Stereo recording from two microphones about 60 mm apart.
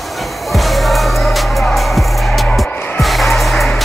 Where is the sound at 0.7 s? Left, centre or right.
Centre.